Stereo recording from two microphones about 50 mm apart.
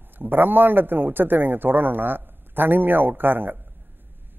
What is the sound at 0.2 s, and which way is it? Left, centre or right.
Speech, right.